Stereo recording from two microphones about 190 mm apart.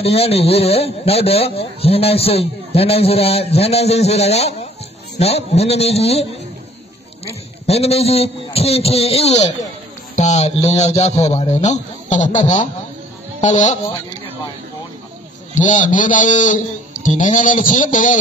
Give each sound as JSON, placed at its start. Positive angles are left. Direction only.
{"t": 0.0, "sound": "speech", "side_deg": 30}
{"t": 7.6, "sound": "a man's voice", "side_deg": 35}
{"t": 15.5, "sound": "a man's voice", "side_deg": 40}